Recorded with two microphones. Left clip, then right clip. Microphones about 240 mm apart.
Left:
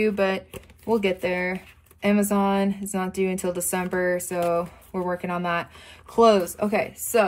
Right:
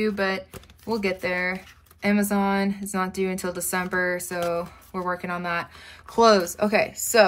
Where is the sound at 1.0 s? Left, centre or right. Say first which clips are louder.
Left 1 dB; centre.